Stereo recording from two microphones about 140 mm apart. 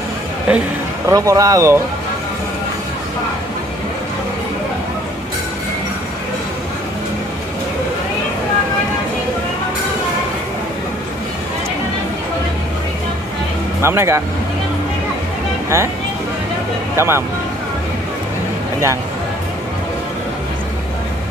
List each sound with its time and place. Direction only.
0.5 s a man's voice: 10° right (ahead or behind)
1.0 s speech: 25° right (ahead or behind)
13.7 s speech: 20° right (ahead or behind)
16.9 s speech: 15° right (ahead or behind)